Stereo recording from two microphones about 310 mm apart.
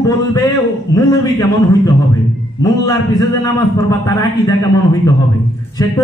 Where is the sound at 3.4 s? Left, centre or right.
Centre.